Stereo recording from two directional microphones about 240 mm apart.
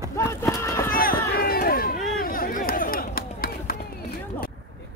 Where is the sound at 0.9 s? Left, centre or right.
Left.